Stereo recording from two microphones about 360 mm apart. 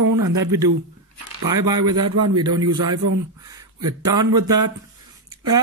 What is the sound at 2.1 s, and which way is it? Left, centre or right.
Speech, right.